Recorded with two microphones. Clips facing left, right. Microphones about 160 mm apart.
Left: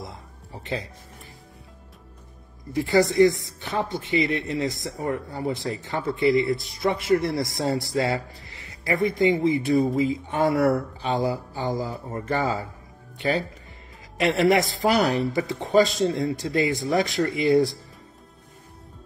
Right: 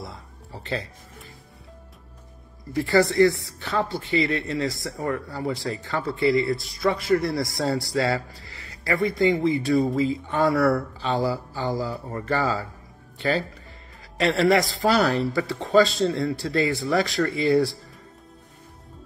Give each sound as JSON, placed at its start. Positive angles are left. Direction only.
{"t": 0.6, "sound": "speech", "side_deg": 15}
{"t": 2.7, "sound": "a man's voice", "side_deg": 20}